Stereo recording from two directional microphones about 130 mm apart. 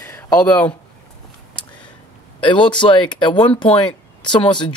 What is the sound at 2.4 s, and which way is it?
Speech, 40° left (ahead or behind).